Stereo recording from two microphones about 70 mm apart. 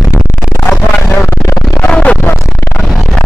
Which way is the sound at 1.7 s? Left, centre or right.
Centre.